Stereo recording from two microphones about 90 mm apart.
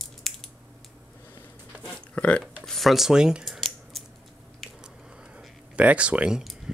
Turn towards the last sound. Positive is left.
turn(degrees=-5)  # may be behind; listen again after turning